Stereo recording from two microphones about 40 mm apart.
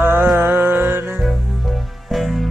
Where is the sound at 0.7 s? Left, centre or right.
Right.